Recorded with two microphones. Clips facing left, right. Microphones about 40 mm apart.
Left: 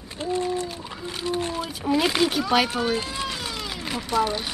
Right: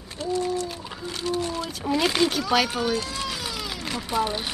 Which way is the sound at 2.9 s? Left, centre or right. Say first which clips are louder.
Left 1 dB; left.